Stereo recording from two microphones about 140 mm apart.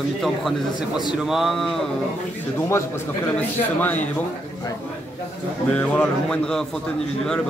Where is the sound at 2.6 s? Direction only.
20° left (ahead or behind).